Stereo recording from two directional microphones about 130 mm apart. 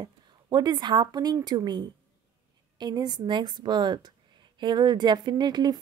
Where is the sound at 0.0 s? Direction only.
35° right (ahead or behind).